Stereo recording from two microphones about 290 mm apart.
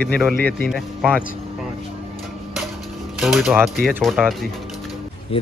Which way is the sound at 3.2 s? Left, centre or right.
Centre.